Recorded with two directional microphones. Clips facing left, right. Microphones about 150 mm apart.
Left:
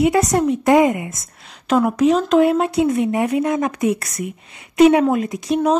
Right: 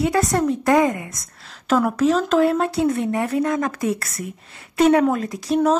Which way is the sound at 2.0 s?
5° left (ahead or behind).